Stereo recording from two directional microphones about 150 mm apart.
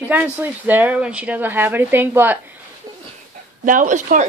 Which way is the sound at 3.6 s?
55° right (ahead or behind).